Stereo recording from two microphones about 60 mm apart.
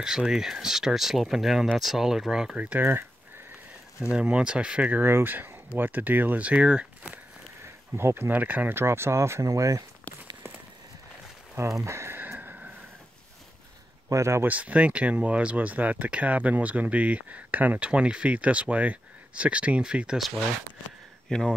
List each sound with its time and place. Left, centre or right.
0.0 s speech: centre
2.8 s speech: right
4.0 s speech: centre
5.0 s speech: right; by 7.2 s centre
7.9 s speech: right
8.3 s speech: right
8.7 s speech: right
11.8 s speech: right
12.2 s a sound: right
14.0 s speech: right
14.4 s speech: right
21.3 s speech: centre